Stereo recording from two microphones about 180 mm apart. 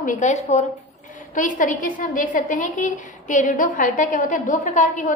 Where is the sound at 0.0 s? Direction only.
45° left (ahead or behind).